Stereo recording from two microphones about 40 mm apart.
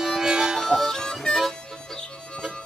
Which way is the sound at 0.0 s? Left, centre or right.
Centre.